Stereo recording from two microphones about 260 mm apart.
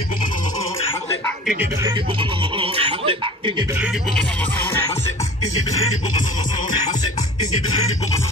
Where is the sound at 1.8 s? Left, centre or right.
Centre.